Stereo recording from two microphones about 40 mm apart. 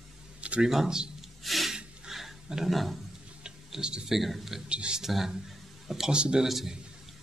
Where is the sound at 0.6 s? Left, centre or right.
Centre.